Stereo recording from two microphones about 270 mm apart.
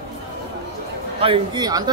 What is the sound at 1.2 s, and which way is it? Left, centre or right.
Speech, centre.